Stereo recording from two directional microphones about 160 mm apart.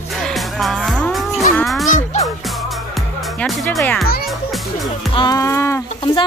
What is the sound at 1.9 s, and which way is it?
Music, 50° left (ahead or behind).